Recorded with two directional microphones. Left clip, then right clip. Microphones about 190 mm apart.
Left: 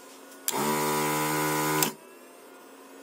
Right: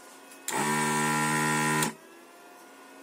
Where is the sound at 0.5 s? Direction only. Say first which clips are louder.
Even; 10° right (ahead or behind).